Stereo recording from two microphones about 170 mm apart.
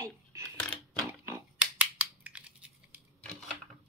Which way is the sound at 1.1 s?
15° right (ahead or behind).